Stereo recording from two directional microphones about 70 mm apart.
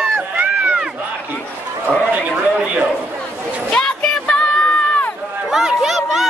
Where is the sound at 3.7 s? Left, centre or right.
Centre.